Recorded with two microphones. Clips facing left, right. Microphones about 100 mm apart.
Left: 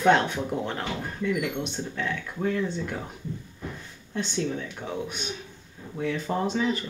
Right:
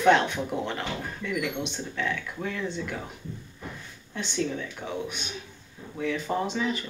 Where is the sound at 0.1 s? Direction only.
40° left (ahead or behind).